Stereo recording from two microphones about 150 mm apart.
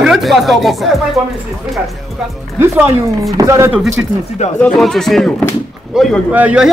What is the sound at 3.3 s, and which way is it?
Speech, 20° right (ahead or behind).